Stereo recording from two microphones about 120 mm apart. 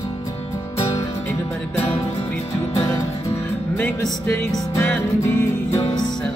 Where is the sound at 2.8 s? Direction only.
25° left (ahead or behind).